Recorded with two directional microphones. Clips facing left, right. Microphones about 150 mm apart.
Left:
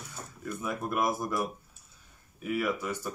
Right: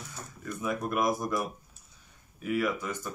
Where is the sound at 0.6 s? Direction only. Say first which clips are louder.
Right 2 dB; centre (ahead or behind).